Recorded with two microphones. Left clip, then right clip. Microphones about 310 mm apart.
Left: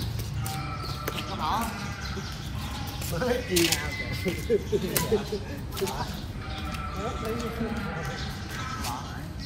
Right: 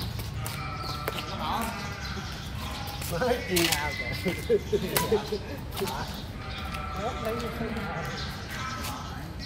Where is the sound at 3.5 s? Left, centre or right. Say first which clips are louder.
Left 1 dB; centre.